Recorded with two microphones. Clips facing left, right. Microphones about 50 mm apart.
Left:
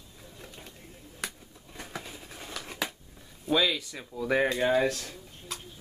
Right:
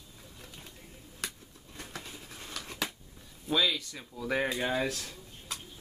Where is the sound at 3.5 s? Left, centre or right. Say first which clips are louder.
Left 3 dB; centre.